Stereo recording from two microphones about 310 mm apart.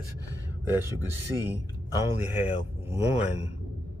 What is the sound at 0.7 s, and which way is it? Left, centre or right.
Speech, centre.